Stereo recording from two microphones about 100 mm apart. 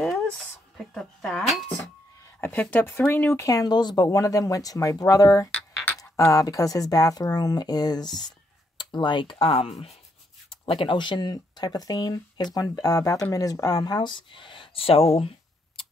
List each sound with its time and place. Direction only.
0.7 s speech: 5° left (ahead or behind)
2.4 s speech: 20° left (ahead or behind)
3.4 s speech: 40° left (ahead or behind); by 9.9 s 80° left
10.7 s speech: 60° left (ahead or behind)
15.1 s a sound: 70° left (ahead or behind)